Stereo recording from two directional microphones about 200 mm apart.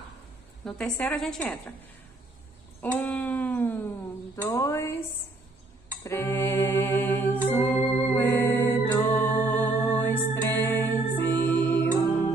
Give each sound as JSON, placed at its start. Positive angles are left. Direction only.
{"t": 0.7, "sound": "a woman's voice", "side_deg": 5}
{"t": 2.8, "sound": "a sound", "side_deg": 10}
{"t": 4.5, "sound": "speech", "side_deg": 15}
{"t": 6.0, "sound": "music", "side_deg": 10}